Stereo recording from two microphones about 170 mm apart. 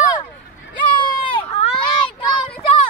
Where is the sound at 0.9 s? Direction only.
30° left (ahead or behind).